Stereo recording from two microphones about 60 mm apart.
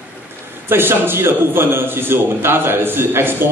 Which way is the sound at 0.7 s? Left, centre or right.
Right.